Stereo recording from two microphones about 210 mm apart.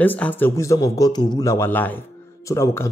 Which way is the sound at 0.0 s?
10° left (ahead or behind).